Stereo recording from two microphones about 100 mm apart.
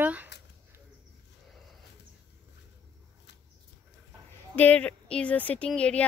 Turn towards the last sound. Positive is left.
turn(degrees=10)  # may be behind; listen again after turning